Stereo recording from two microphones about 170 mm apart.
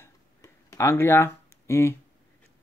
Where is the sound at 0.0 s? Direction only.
20° left (ahead or behind).